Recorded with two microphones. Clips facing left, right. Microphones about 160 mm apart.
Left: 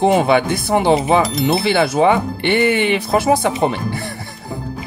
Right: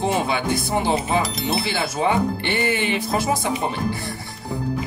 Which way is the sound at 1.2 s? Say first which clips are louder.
Left 8 dB; centre (ahead or behind).